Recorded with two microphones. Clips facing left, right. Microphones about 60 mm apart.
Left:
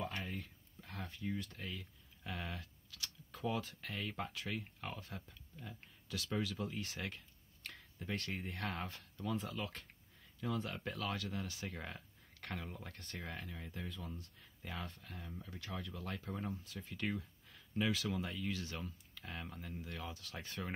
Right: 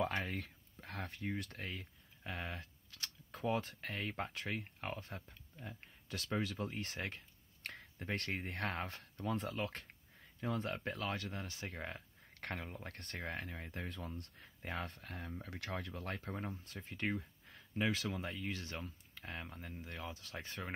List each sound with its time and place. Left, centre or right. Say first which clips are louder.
0.3 s speech: right 3 dB; right
2.2 s speech: right 1 dB; right
12.4 s speech: right 2 dB; right
12.8 s speech: right 3 dB; right
14.4 s speech: right 4 dB; right
15.6 s speech: right 3 dB; right
15.9 s speech: right 1 dB; right